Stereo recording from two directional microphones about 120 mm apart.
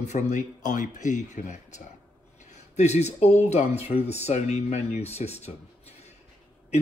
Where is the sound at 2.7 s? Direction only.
70° left (ahead or behind).